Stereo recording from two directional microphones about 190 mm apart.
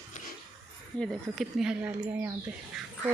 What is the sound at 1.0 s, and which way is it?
Speech, centre (ahead or behind).